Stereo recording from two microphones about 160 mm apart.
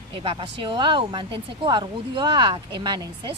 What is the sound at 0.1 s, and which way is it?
A woman's voice, 35° right (ahead or behind).